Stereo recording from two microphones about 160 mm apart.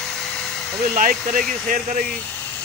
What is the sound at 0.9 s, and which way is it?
Speech, 60° right (ahead or behind).